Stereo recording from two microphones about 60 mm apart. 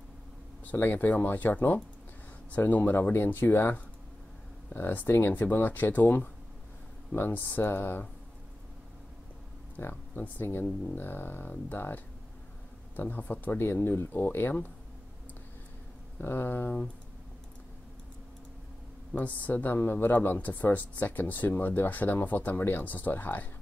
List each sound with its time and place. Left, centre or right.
0.7 s speech: left
9.8 s speech: left
16.2 s speech: left
19.1 s speech: left